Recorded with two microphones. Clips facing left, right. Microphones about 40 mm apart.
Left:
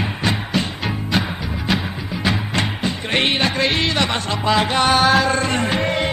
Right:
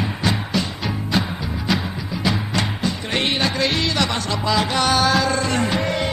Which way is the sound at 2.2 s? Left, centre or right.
Left.